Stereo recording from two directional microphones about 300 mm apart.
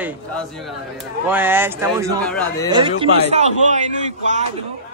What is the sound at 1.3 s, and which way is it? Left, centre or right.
Speech, centre.